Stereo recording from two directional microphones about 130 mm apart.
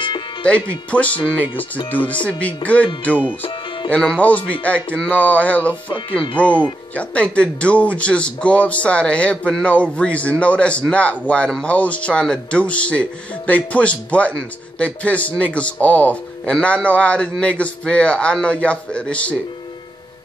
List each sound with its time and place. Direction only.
0.0 s music: 40° left (ahead or behind)
0.5 s a man's voice: 10° left (ahead or behind)
1.5 s speech: 40° left (ahead or behind)
1.9 s a man's voice: 15° left (ahead or behind)
3.9 s a man's voice: 5° left (ahead or behind)